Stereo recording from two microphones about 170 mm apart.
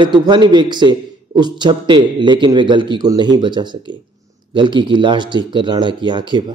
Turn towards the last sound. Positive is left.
turn(degrees=-30)  # may be behind; listen again after turning